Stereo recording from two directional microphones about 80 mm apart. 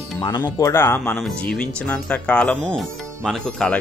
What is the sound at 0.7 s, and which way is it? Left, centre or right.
Speech, left.